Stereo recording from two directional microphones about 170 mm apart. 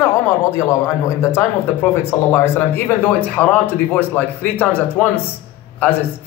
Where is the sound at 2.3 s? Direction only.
15° left (ahead or behind).